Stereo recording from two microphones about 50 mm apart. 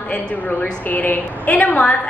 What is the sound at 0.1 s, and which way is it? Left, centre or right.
A woman's voice, left.